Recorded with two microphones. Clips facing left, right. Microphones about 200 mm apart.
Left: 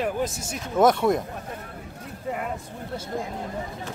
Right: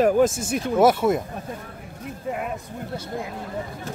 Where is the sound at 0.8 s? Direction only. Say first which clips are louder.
Right 1 dB; 5° right (ahead or behind).